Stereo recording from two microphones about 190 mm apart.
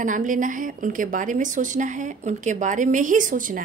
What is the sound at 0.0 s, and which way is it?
A woman's voice, 45° right (ahead or behind).